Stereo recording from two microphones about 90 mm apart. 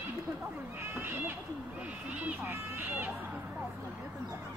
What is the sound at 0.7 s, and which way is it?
Cat, 25° right (ahead or behind).